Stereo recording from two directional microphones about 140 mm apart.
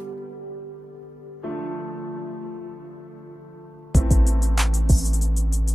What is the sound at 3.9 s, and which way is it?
Music, centre (ahead or behind).